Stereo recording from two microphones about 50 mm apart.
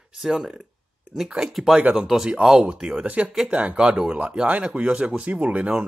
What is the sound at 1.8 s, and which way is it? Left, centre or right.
Speech, right.